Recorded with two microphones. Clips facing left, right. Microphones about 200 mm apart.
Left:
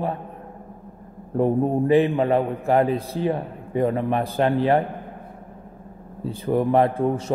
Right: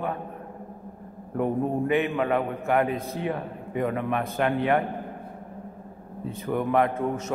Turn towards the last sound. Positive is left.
turn(degrees=30)  # may be behind; listen again after turning